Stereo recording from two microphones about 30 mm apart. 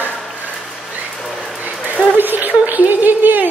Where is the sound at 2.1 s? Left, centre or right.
Right.